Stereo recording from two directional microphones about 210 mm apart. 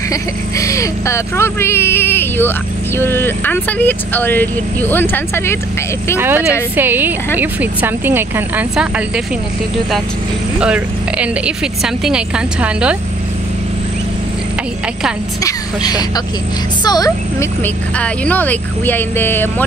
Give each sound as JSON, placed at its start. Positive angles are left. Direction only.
{"t": 0.1, "sound": "speech", "side_deg": 15}
{"t": 6.1, "sound": "speech", "side_deg": -10}
{"t": 10.6, "sound": "a woman's voice", "side_deg": -5}
{"t": 15.4, "sound": "speech", "side_deg": 20}
{"t": 17.9, "sound": "speech", "side_deg": 5}